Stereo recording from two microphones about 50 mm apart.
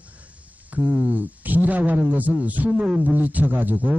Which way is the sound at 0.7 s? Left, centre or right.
Right.